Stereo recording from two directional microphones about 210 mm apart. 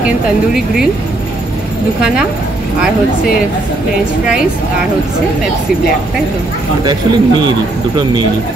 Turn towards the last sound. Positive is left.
turn(degrees=-20)  # may be behind; listen again after turning